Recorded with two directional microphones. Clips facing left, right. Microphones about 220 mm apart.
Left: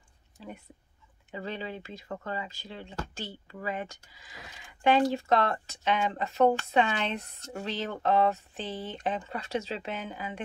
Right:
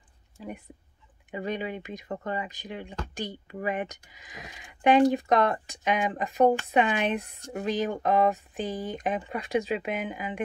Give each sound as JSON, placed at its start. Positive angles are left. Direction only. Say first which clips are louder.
{"t": 1.3, "sound": "speech", "louder": "right 5 dB", "side_deg": -15}